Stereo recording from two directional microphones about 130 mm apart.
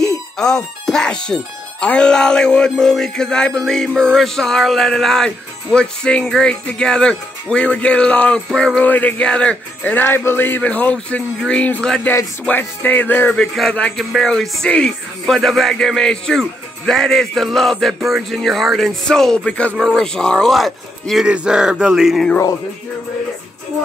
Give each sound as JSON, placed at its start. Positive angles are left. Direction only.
{"t": 0.4, "sound": "speech", "side_deg": 5}